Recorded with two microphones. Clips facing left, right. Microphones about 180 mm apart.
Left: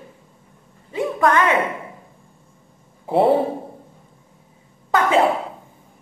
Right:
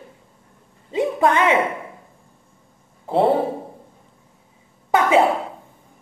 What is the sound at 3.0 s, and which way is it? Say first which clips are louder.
Speech: left 1 dB; 5° left (ahead or behind).